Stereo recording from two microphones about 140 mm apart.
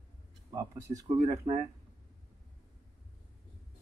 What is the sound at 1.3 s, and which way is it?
Speech, 50° right (ahead or behind).